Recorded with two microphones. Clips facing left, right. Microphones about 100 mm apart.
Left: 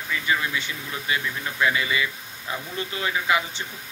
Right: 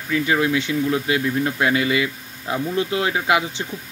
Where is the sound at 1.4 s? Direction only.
55° right (ahead or behind).